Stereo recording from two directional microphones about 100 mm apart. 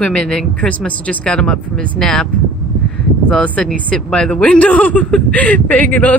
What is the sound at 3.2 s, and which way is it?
Speech, 10° left (ahead or behind).